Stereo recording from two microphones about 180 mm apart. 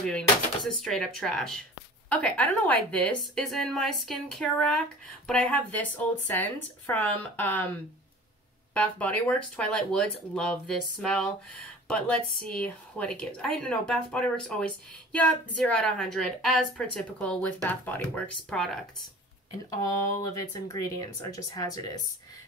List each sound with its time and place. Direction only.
0.8 s a woman's voice: 5° left (ahead or behind)
8.7 s a woman's voice: 5° left (ahead or behind)
19.7 s speech: 20° left (ahead or behind)